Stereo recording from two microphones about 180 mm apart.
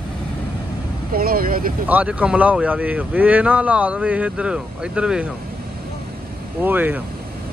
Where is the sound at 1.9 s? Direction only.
10° right (ahead or behind).